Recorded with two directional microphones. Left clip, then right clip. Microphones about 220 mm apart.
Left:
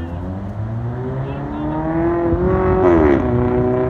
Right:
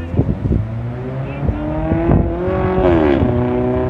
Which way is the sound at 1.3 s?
50° right (ahead or behind).